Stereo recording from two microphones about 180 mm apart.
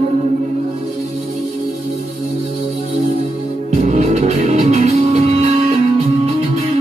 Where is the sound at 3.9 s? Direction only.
40° right (ahead or behind).